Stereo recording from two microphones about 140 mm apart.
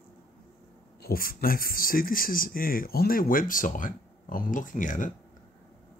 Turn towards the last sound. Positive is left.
turn(degrees=65)  # may be behind; listen again after turning